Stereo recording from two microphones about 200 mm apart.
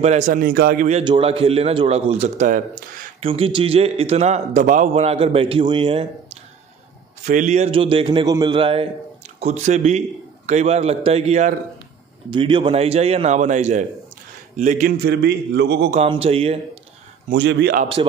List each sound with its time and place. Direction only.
0.0 s a man's voice: 35° right (ahead or behind)
0.8 s a man's voice: 30° right (ahead or behind)
7.2 s a man's voice: 40° right (ahead or behind)
15.0 s a man's voice: 55° right (ahead or behind)
15.9 s speech: 30° right (ahead or behind)
17.3 s a man's voice: 55° right (ahead or behind)
18.0 s speech: 25° right (ahead or behind)